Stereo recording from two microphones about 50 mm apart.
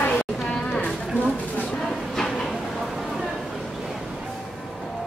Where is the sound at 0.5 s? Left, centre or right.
Left.